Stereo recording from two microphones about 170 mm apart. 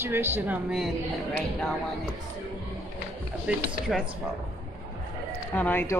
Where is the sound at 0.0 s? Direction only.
15° right (ahead or behind).